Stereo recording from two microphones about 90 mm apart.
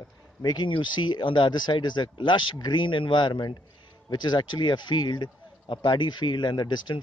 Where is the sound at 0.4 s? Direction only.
55° left (ahead or behind).